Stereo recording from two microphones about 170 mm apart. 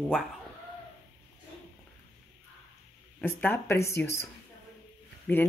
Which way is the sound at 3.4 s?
15° left (ahead or behind).